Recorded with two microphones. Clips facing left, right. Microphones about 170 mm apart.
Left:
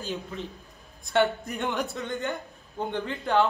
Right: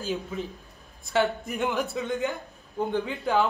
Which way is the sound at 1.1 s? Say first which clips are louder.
Left 1 dB; centre (ahead or behind).